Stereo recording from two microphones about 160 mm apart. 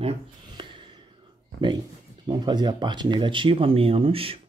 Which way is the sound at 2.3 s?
25° right (ahead or behind).